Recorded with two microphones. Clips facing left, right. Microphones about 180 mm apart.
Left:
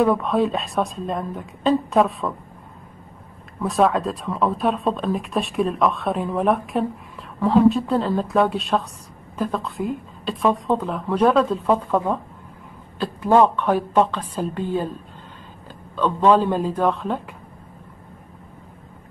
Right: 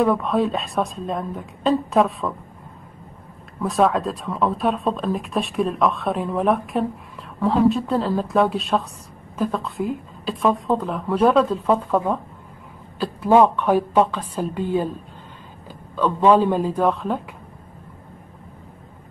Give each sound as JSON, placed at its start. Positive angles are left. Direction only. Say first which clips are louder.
{"t": 0.0, "sound": "speech", "louder": "left 1 dB", "side_deg": 0}
{"t": 3.6, "sound": "a woman's voice", "louder": "even", "side_deg": 0}
{"t": 16.0, "sound": "a woman's voice", "louder": "right 1 dB", "side_deg": -10}